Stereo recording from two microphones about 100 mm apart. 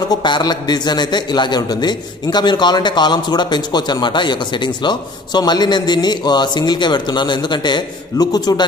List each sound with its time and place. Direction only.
0.1 s a man's voice: 45° left (ahead or behind)